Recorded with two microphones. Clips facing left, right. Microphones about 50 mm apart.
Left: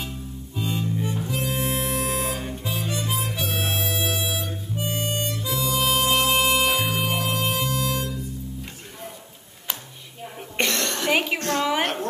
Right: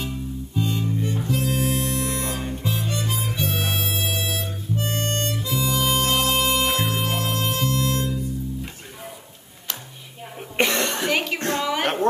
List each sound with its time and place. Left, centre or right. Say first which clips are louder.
0.6 s music: right 2 dB; centre
0.9 s harmonica: right 2 dB; centre
10.6 s cough: right 3 dB; centre
11.1 s music: left 4 dB; centre
11.3 s a sound: left 1 dB; right